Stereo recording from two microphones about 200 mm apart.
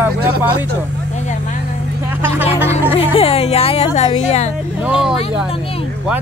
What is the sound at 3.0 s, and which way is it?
Speech, 30° left (ahead or behind).